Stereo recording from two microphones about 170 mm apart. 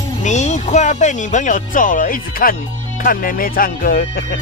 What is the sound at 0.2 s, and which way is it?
Speech, 45° left (ahead or behind).